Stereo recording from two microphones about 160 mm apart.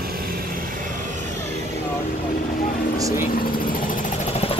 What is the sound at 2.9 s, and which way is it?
Vehicle, 20° right (ahead or behind).